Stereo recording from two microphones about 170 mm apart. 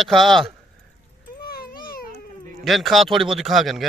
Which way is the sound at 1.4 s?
60° left (ahead or behind).